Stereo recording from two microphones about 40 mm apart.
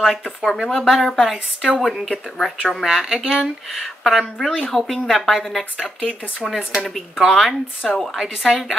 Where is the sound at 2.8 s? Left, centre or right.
Centre.